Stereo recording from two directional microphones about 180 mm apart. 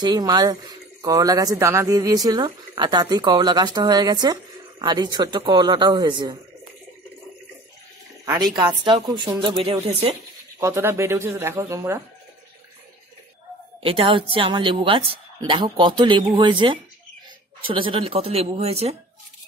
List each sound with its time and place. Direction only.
0.0 s speech: 20° right (ahead or behind)
8.8 s speech: 25° right (ahead or behind)
10.6 s speech: 15° right (ahead or behind)
13.8 s speech: 30° right (ahead or behind)